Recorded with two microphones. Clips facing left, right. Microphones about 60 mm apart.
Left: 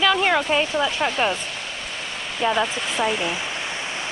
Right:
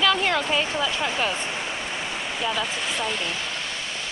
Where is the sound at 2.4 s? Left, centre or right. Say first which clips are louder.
Left 7 dB; left.